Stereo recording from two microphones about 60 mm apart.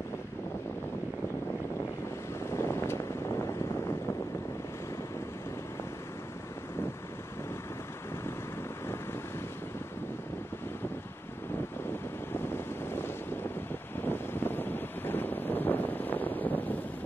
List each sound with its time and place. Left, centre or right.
2.4 s vehicle: left
12.4 s vehicle: left
14.0 s wind noise: left